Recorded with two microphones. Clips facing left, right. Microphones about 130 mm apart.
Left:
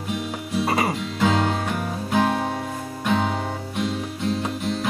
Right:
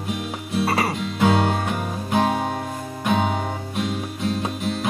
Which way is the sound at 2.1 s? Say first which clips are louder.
Right 1 dB; 15° right (ahead or behind).